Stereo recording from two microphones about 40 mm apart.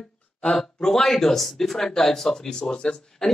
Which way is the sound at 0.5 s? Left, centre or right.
Centre.